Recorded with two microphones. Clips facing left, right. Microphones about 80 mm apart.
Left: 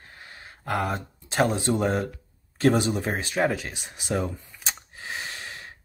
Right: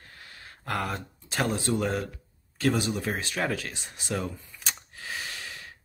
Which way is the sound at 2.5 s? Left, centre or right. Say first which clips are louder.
Left 5 dB; left.